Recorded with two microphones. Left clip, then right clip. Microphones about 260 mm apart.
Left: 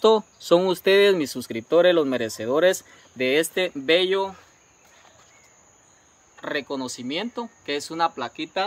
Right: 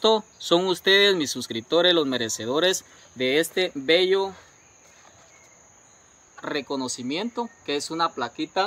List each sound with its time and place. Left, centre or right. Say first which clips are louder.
0.0 s speech: left 3 dB; left
6.4 s speech: even; centre